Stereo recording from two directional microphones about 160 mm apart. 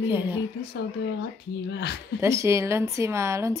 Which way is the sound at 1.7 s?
90° left.